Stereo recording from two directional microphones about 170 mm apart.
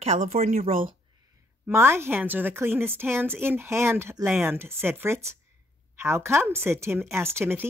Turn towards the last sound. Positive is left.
turn(degrees=-15)  # may be behind; listen again after turning